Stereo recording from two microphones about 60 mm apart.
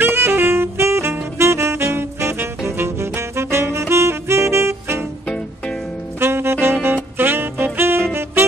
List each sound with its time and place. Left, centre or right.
0.0 s saxophone: right
6.1 s saxophone: right